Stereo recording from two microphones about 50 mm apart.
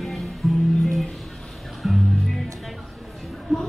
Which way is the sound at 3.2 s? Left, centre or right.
Centre.